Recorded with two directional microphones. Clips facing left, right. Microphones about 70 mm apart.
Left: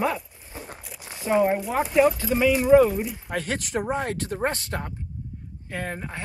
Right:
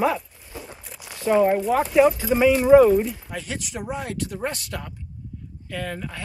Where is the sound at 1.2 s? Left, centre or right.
Centre.